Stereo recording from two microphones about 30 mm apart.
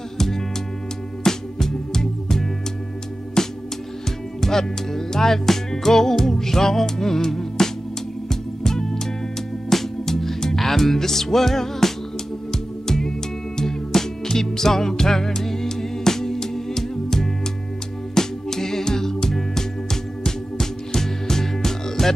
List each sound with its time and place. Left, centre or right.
1.2 s music: centre